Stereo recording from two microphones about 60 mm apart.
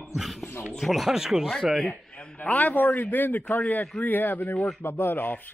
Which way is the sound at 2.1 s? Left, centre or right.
Left.